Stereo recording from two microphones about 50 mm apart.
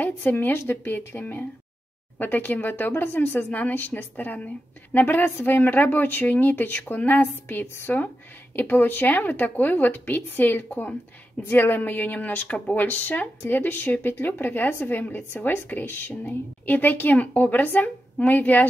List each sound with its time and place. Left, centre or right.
0.0 s speech: left